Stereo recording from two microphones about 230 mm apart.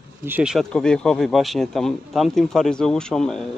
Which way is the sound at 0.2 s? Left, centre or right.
Centre.